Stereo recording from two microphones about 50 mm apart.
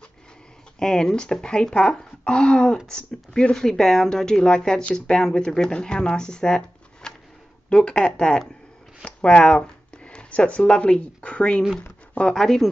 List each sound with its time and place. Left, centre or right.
0.7 s speech: centre
12.1 s zipper: left
12.4 s speech: centre